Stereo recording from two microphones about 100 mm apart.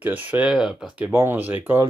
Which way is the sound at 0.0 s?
15° right (ahead or behind).